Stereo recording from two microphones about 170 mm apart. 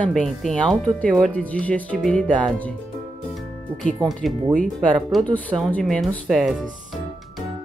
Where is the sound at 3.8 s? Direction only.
Centre (ahead or behind).